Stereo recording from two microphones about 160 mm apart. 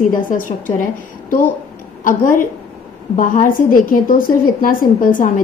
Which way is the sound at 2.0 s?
55° left (ahead or behind).